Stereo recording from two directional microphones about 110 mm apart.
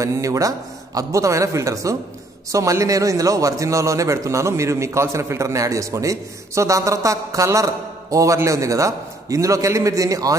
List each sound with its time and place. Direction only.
0.0 s a man's voice: 30° right (ahead or behind)